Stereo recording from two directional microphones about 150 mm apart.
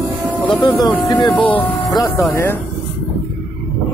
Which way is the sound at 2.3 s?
15° left (ahead or behind).